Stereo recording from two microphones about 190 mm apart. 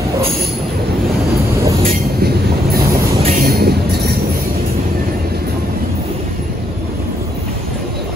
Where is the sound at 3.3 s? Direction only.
55° right (ahead or behind).